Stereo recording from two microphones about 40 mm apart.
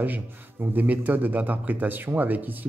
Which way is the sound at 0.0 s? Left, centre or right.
Right.